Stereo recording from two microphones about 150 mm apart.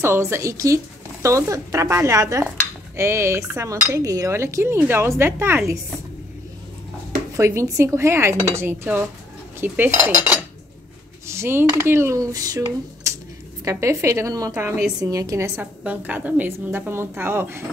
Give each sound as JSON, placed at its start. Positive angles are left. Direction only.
{"t": 0.0, "sound": "cutlery", "side_deg": -15}
{"t": 7.3, "sound": "cutlery", "side_deg": -20}
{"t": 9.6, "sound": "a woman's voice", "side_deg": -15}
{"t": 11.2, "sound": "cutlery", "side_deg": -15}
{"t": 14.5, "sound": "a woman's voice", "side_deg": -20}